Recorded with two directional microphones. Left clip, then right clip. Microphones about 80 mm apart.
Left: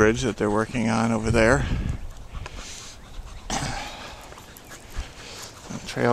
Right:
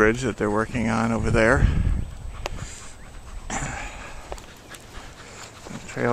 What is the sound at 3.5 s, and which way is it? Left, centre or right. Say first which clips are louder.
Throat clearing: left 1 dB; left.